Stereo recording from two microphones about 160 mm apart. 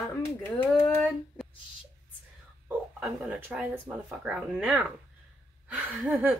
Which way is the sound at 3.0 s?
5° right (ahead or behind).